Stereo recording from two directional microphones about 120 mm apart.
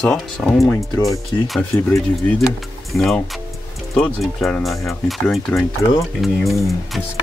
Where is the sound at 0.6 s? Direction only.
25° left (ahead or behind).